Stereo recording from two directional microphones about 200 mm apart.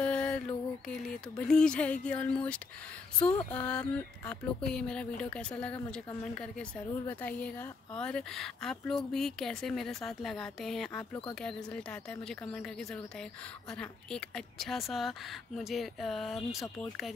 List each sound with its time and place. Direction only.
0.0 s mantra: 5° left (ahead or behind)
0.8 s a woman's voice: 5° left (ahead or behind)